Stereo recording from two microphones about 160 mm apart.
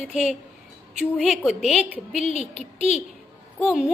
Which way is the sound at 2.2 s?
45° left (ahead or behind).